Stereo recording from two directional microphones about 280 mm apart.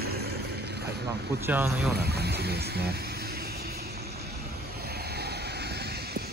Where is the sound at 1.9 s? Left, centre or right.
Right.